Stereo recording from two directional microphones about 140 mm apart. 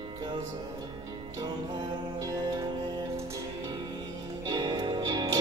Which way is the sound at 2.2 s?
25° right (ahead or behind).